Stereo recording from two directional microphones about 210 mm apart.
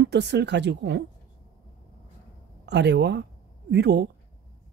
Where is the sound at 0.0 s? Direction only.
55° right (ahead or behind).